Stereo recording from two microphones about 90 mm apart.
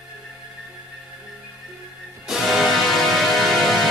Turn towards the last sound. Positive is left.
turn(degrees=0)  # may be behind; listen again after turning